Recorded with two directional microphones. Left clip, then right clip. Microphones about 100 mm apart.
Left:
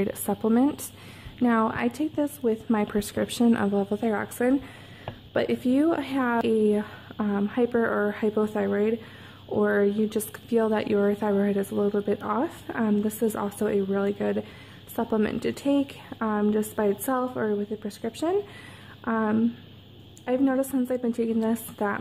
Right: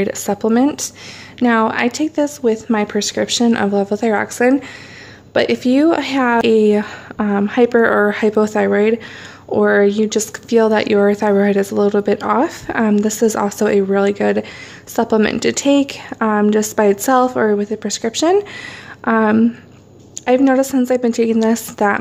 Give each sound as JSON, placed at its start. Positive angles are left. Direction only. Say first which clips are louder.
{"t": 0.0, "sound": "a woman's voice", "louder": "right 9 dB", "side_deg": 5}